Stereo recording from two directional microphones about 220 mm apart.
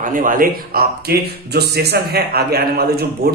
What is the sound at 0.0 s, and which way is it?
Speech, 35° right (ahead or behind).